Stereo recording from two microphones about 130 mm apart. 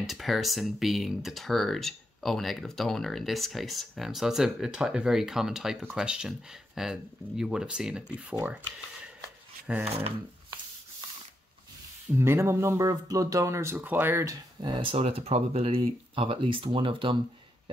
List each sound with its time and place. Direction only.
0.0 s speech: centre (ahead or behind)
9.7 s speech: 15° right (ahead or behind)
12.2 s speech: 20° right (ahead or behind)
14.7 s speech: 40° right (ahead or behind)